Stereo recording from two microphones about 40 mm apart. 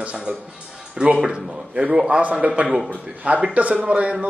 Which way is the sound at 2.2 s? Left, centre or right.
Right.